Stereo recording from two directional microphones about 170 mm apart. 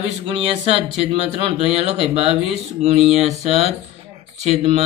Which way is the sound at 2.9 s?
Centre (ahead or behind).